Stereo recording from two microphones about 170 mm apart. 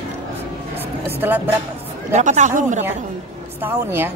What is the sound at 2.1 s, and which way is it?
Speech, 45° right (ahead or behind).